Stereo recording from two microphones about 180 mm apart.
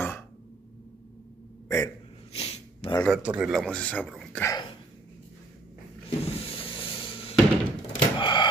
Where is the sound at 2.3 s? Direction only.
30° left (ahead or behind).